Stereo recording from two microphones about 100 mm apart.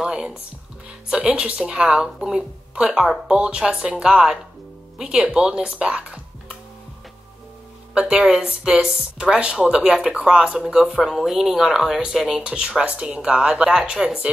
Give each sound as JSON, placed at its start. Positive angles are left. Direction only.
{"t": 0.0, "sound": "speech", "side_deg": -5}
{"t": 7.9, "sound": "speech", "side_deg": -10}